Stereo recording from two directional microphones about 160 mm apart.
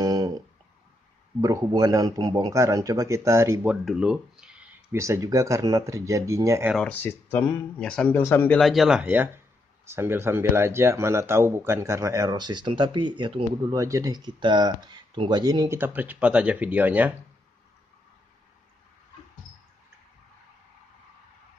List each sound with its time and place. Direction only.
0.0 s a sound: 25° right (ahead or behind)
1.4 s speech: 25° right (ahead or behind)
3.6 s speech: 5° right (ahead or behind)
5.0 s speech: 20° right (ahead or behind)
6.7 s speech: 5° left (ahead or behind)
8.5 s speech: centre (ahead or behind)